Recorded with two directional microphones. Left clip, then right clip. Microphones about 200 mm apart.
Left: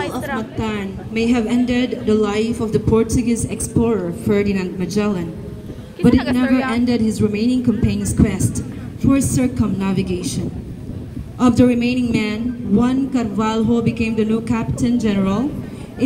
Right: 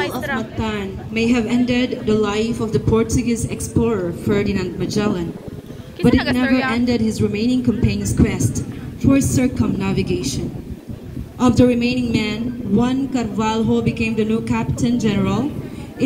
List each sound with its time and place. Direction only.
0.4 s a woman's voice: 60° left (ahead or behind)
6.4 s speech: 5° left (ahead or behind)
6.7 s a woman's voice: 60° left (ahead or behind)